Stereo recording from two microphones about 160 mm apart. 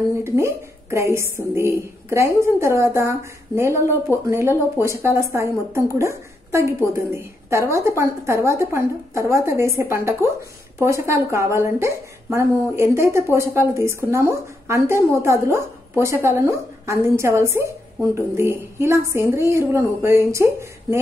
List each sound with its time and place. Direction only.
0.2 s a woman's voice: 15° right (ahead or behind)